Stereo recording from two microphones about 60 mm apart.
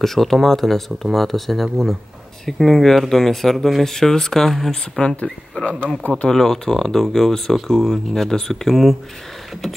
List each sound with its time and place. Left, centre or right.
0.0 s speech: centre
5.1 s speech: centre
6.3 s speech: centre